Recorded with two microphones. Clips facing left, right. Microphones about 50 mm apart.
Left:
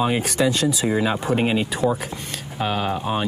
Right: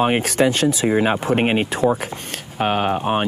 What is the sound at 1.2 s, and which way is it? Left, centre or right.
Speech, right.